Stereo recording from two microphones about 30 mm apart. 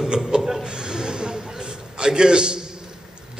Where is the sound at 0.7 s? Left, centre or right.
Right.